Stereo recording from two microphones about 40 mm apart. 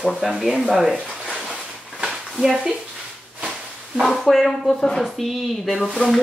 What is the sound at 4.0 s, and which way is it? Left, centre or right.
Speech, centre.